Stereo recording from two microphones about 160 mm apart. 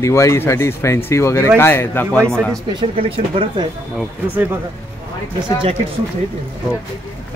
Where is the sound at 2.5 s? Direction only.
30° right (ahead or behind).